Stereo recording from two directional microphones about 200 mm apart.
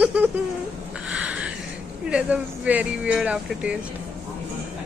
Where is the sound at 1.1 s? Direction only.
5° right (ahead or behind).